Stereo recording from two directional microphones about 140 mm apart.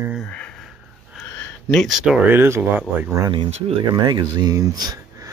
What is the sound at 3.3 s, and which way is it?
Speech, 40° right (ahead or behind).